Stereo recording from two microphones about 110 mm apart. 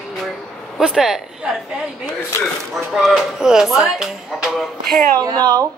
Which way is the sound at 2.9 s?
Centre (ahead or behind).